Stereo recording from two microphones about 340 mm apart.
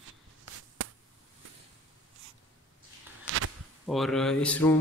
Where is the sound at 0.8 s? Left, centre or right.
Right.